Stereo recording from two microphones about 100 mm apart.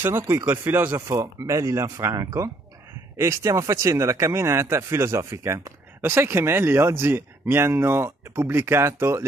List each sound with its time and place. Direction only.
0.0 s speech: 25° right (ahead or behind)